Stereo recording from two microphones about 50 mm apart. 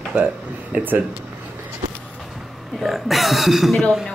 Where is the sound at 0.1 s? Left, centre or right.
Right.